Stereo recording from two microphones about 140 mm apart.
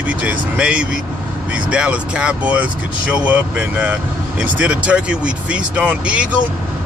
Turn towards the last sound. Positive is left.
turn(degrees=-10)  # may be behind; listen again after turning